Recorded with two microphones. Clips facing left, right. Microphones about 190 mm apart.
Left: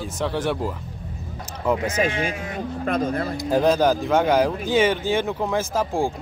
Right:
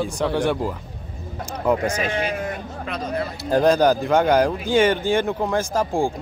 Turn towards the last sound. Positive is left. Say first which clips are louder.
# right 1 dB
turn(degrees=5)  # may be behind; listen again after turning